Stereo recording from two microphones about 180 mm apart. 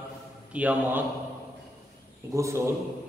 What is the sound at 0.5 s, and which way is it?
Speech, 10° right (ahead or behind).